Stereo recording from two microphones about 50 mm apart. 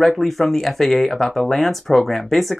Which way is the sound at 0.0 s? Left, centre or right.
Centre.